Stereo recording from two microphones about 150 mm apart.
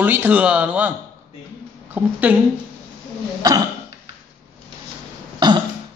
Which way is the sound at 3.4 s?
25° right (ahead or behind).